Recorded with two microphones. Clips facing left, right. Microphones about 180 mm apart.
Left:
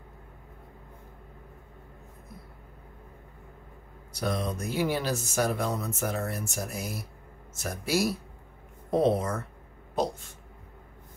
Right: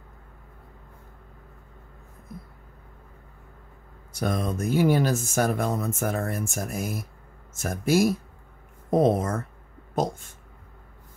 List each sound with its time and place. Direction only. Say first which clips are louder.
4.1 s speech: right 3 dB; 50° right (ahead or behind)